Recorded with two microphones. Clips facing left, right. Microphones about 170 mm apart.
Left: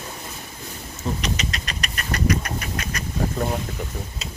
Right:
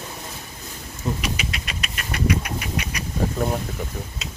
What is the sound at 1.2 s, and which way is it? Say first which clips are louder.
Duck: left 1 dB; 10° right (ahead or behind).